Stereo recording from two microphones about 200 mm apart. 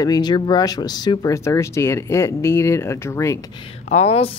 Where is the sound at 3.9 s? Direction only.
30° left (ahead or behind).